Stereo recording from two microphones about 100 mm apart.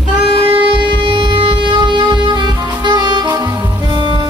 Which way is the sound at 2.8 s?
45° right (ahead or behind).